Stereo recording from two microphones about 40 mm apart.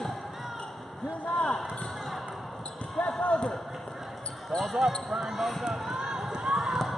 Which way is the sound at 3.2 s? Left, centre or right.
Left.